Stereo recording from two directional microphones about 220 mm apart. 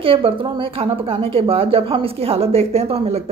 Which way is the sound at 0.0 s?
25° right (ahead or behind).